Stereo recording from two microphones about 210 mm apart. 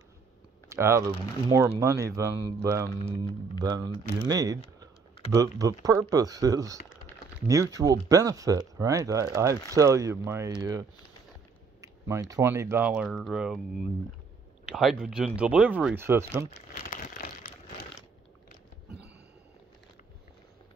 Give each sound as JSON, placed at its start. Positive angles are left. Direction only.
{"t": 0.7, "sound": "speech", "side_deg": -15}
{"t": 14.7, "sound": "speech", "side_deg": 0}
{"t": 16.9, "sound": "crumpling", "side_deg": 40}